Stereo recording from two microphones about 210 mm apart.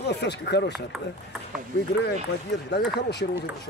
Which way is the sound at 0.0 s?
55° left (ahead or behind).